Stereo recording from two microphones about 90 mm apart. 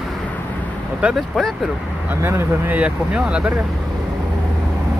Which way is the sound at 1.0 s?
10° right (ahead or behind).